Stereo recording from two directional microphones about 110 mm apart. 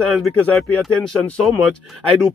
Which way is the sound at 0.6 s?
5° left (ahead or behind).